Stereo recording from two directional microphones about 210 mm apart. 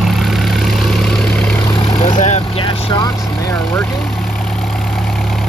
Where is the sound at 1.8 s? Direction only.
25° left (ahead or behind).